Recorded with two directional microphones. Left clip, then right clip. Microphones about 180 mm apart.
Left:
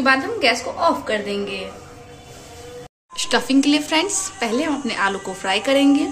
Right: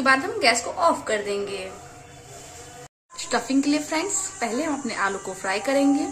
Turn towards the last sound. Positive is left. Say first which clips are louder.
# left 5 dB
turn(degrees=-5)  # may be behind; listen again after turning